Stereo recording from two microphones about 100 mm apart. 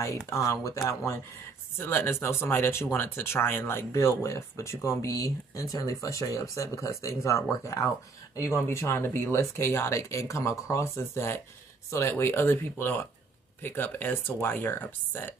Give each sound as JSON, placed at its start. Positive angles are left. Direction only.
{"t": 0.3, "sound": "speech", "side_deg": 30}
{"t": 1.8, "sound": "speech", "side_deg": 25}